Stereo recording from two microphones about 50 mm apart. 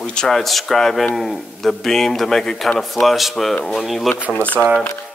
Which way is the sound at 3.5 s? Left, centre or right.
Centre.